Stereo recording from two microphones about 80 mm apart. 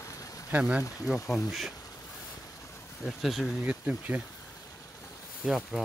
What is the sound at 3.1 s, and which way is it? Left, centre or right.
Speech, centre.